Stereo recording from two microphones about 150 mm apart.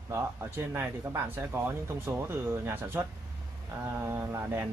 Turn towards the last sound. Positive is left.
turn(degrees=-15)  # may be behind; listen again after turning